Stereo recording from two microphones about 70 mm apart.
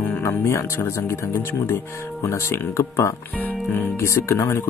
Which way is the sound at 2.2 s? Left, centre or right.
Left.